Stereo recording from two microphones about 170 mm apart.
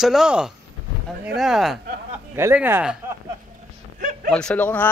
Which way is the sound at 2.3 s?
15° right (ahead or behind).